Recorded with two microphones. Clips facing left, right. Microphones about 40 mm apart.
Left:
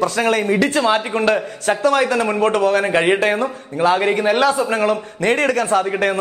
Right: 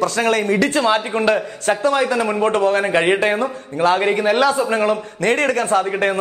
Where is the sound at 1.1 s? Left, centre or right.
Centre.